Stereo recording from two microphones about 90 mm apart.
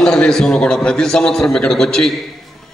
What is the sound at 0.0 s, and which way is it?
A man's voice, 10° left (ahead or behind).